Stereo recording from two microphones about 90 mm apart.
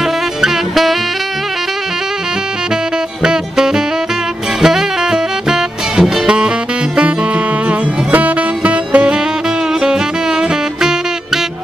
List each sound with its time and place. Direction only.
0.0 s music: 5° right (ahead or behind)
3.2 s music: 5° right (ahead or behind)